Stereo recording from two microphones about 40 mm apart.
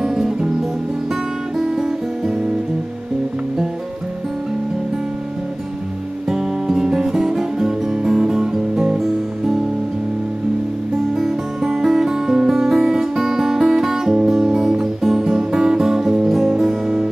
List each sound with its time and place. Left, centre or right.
0.0 s music: centre
1.6 s music: centre
6.2 s guitar: centre
11.1 s music: centre
14.5 s guitar: centre
15.0 s music: centre